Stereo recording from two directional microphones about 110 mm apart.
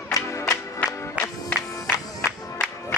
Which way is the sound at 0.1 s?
30° left (ahead or behind).